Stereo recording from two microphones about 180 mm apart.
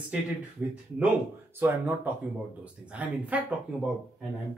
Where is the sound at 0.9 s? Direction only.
10° right (ahead or behind).